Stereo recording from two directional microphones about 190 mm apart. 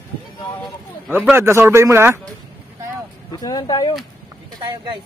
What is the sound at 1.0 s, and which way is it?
A man's voice, 10° right (ahead or behind).